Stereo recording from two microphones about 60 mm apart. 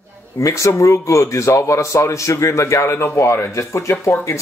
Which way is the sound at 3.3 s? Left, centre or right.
Left.